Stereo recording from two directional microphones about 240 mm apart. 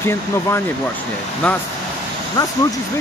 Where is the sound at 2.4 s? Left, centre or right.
Centre.